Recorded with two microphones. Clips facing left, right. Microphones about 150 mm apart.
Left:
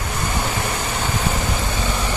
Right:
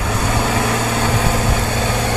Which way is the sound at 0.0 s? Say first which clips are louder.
Right 5 dB; 85° right.